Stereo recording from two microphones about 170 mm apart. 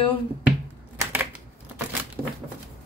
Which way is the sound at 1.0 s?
10° right (ahead or behind).